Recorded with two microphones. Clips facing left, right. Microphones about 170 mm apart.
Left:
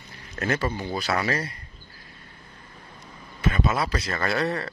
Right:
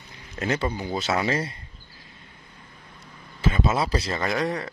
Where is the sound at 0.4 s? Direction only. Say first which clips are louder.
Even; 20° right (ahead or behind).